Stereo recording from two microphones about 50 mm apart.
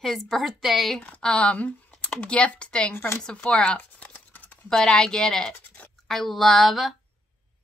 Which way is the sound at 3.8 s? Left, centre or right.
Left.